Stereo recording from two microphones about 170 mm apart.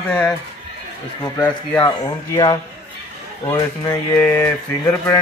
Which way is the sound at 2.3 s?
25° left (ahead or behind).